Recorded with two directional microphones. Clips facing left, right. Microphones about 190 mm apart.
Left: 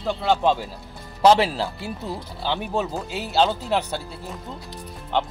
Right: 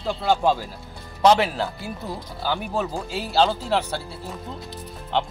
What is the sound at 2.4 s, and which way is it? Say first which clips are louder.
Speech: even; 25° left (ahead or behind).